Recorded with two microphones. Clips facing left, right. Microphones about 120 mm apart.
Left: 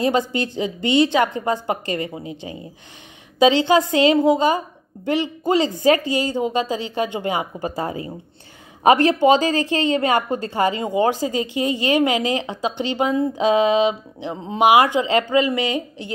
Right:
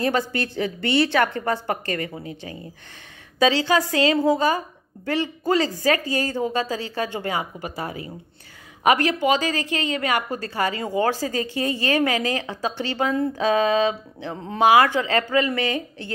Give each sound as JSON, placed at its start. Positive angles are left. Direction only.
{"t": 0.0, "sound": "a woman's voice", "side_deg": 20}